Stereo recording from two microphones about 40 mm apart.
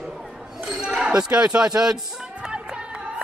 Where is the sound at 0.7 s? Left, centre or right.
Centre.